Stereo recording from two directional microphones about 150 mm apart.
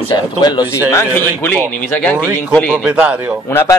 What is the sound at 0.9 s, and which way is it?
Speech, 15° left (ahead or behind).